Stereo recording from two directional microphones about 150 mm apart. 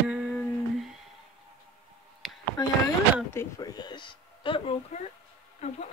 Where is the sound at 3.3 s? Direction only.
15° left (ahead or behind).